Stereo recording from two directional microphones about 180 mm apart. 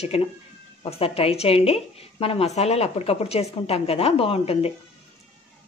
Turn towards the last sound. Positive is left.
turn(degrees=35)  # may be behind; listen again after turning